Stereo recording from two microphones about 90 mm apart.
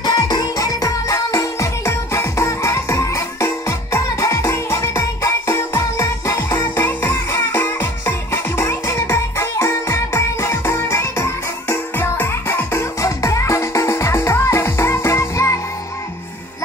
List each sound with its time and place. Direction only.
0.0 s music: 50° left (ahead or behind); by 6.3 s 35° left (ahead or behind)
6.8 s music: 20° left (ahead or behind)
12.0 s music: 25° left (ahead or behind)